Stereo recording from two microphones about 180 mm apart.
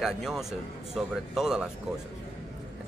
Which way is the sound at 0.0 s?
Centre (ahead or behind).